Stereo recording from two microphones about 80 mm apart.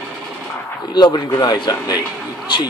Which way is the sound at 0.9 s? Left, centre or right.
Left.